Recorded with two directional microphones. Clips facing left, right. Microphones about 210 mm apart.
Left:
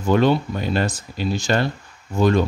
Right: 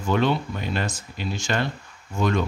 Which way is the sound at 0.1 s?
40° left (ahead or behind).